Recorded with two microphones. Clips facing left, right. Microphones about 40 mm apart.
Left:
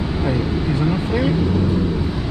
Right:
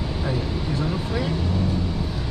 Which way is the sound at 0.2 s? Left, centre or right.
Left.